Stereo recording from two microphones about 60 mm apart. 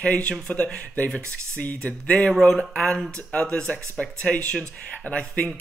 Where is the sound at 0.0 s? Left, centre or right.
Left.